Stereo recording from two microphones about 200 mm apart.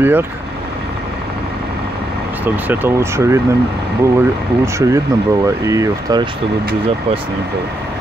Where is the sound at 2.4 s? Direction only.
10° right (ahead or behind).